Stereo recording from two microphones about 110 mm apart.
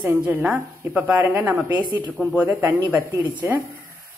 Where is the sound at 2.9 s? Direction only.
15° right (ahead or behind).